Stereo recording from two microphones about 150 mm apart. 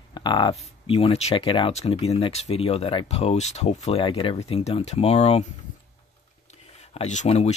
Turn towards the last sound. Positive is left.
turn(degrees=45)  # may be behind; listen again after turning